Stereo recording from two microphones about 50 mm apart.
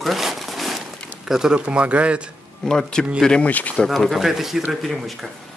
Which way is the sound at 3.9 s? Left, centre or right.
Centre.